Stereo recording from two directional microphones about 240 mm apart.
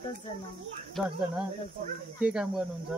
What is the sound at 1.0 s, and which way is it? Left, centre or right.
Speech, centre.